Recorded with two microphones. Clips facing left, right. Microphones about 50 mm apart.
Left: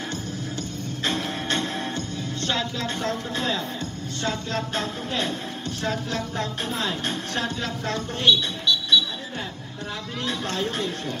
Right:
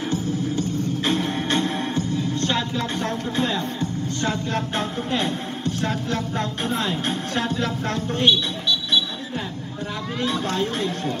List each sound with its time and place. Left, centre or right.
0.1 s music: centre
4.2 s speech: centre
8.3 s a sound: centre
10.2 s speech: centre